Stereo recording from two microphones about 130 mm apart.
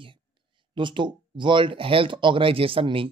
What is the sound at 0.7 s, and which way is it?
Speech, 40° right (ahead or behind).